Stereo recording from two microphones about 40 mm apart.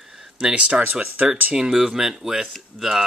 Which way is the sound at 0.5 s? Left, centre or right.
Right.